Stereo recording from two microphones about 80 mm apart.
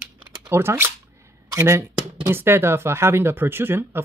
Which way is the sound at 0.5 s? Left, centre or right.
Right.